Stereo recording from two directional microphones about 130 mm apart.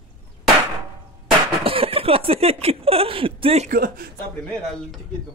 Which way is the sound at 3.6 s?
90° right.